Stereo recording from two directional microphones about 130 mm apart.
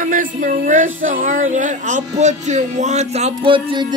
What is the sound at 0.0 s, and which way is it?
Speech, 90° right.